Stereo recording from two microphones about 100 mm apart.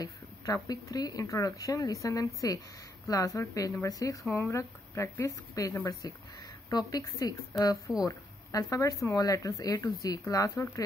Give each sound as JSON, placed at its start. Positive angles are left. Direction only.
{"t": 0.0, "sound": "speech", "side_deg": 40}